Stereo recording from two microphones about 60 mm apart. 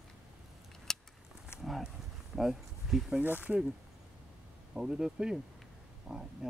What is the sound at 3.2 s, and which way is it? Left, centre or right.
Speech, right.